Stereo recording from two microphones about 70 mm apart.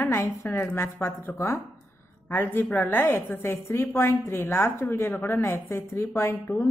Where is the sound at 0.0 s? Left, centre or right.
Left.